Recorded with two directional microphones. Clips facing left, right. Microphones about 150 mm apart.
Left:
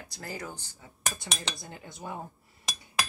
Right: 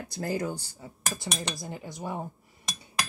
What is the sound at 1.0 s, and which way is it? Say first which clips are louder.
Cutlery: right 2 dB; centre (ahead or behind).